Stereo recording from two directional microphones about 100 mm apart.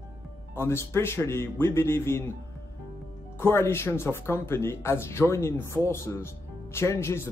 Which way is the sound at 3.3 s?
25° left (ahead or behind).